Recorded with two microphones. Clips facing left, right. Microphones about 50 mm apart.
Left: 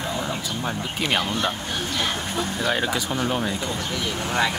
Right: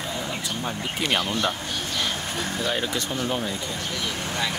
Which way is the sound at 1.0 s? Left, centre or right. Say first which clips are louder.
Left 1 dB; centre.